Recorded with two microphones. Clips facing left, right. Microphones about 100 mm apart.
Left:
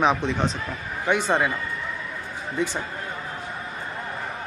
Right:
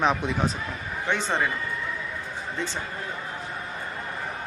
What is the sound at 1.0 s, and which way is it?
Speech, 10° left (ahead or behind).